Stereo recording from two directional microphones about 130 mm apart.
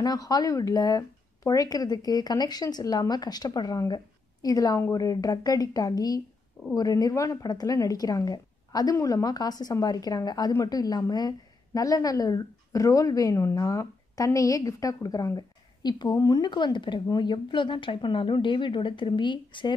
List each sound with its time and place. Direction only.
0.0 s a woman's voice: 30° left (ahead or behind)